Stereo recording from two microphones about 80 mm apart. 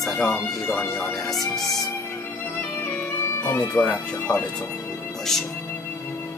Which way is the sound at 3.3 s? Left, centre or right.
Left.